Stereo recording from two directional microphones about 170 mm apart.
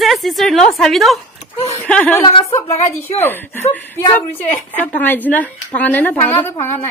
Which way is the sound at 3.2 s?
10° left (ahead or behind).